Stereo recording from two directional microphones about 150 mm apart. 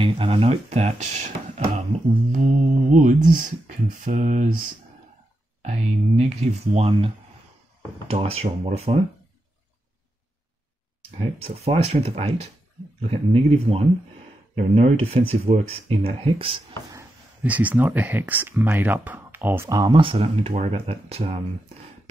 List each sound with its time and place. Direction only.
0.0 s speech: 35° right (ahead or behind)
8.1 s speech: 40° right (ahead or behind)
11.1 s speech: 40° right (ahead or behind)
17.4 s speech: 10° right (ahead or behind)
20.0 s speech: 35° right (ahead or behind)